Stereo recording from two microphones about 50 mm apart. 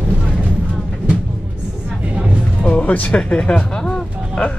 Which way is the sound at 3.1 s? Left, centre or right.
Centre.